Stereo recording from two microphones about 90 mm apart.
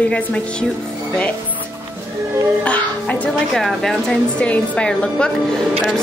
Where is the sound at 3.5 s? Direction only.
5° left (ahead or behind).